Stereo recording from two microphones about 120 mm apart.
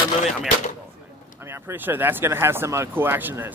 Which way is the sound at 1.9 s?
20° right (ahead or behind).